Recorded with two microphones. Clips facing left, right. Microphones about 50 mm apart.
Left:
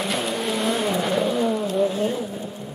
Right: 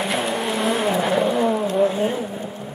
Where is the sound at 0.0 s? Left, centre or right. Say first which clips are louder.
Right 2 dB; centre.